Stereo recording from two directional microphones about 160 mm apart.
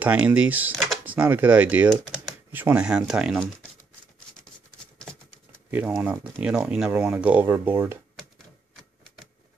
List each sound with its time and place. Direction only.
0.0 s speech: 10° right (ahead or behind)
5.7 s speech: 10° right (ahead or behind)